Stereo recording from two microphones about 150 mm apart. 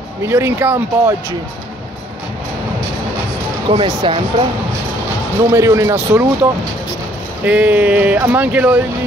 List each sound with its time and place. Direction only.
0.2 s speech: 15° right (ahead or behind)
3.6 s speech: 30° right (ahead or behind)
5.5 s speech: 20° right (ahead or behind)
7.4 s speech: 10° right (ahead or behind)